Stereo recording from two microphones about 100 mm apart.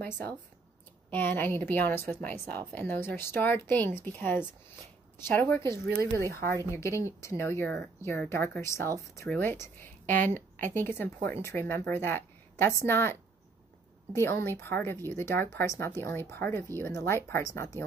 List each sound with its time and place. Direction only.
0.0 s a woman's voice: 20° left (ahead or behind)